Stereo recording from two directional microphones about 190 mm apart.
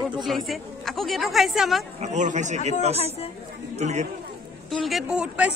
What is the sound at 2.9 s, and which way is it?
Speech, 35° left (ahead or behind).